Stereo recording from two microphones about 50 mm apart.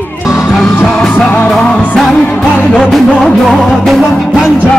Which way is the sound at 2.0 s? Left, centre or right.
Centre.